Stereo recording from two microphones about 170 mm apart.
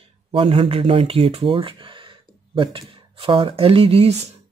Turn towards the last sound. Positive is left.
turn(degrees=-40)  # may be behind; listen again after turning